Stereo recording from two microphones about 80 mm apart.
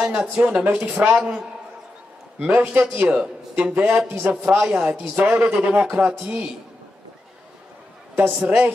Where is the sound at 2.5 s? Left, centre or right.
Right.